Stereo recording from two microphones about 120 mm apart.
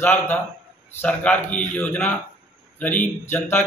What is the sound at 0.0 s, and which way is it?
Speech, 15° left (ahead or behind).